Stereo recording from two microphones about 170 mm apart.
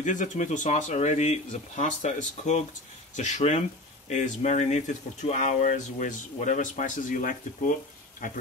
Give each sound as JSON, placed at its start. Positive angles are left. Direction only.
{"t": 0.0, "sound": "speech", "side_deg": 50}